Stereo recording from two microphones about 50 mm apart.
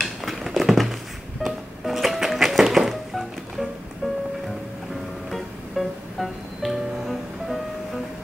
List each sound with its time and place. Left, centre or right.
0.0 s a sound: centre
1.4 s music: centre
5.3 s music: centre